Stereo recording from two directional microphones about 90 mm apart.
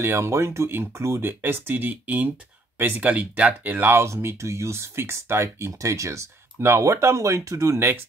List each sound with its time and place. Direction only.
0.0 s speech: 25° right (ahead or behind)